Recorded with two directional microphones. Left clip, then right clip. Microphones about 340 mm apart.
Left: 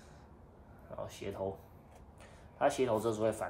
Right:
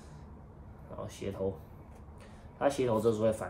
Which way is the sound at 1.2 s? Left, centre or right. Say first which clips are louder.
Right 5 dB; centre.